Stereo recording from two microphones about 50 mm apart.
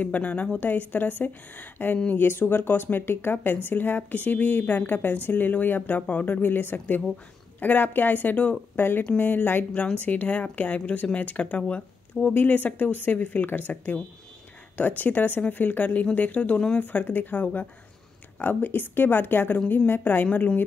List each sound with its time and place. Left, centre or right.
0.0 s a woman's voice: left
8.7 s a woman's voice: left; by 12.4 s centre
12.4 s a woman's voice: left
16.8 s a woman's voice: left